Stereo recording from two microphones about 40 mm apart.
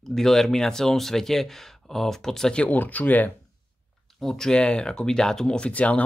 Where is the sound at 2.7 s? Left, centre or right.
Left.